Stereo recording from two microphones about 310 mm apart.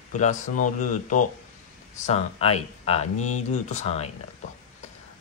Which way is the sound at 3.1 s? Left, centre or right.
Left.